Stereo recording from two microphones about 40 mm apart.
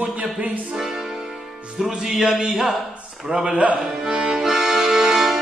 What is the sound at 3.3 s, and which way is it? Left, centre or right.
Speech, right.